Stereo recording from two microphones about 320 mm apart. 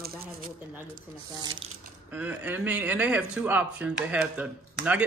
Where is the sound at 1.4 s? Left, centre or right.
Centre.